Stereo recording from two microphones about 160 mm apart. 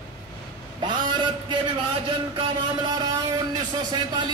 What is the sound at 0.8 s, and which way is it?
A man's voice, 30° right (ahead or behind).